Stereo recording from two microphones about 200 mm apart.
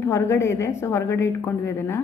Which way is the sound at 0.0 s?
15° left (ahead or behind).